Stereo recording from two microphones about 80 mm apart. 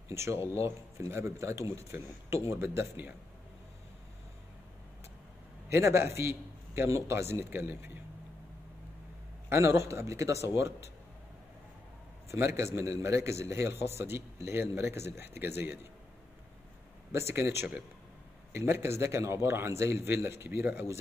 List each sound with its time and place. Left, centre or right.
0.1 s a man's voice: right
5.7 s a man's voice: right
9.5 s a man's voice: right
12.3 s a man's voice: right
17.1 s a man's voice: right